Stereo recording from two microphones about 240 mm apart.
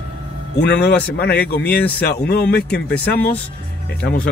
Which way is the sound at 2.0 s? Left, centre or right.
Left.